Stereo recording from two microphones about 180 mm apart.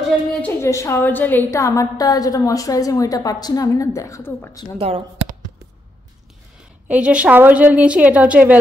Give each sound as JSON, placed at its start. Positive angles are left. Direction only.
{"t": 0.6, "sound": "a woman's voice", "side_deg": 15}
{"t": 4.7, "sound": "a sound", "side_deg": -35}
{"t": 6.9, "sound": "a woman's voice", "side_deg": -5}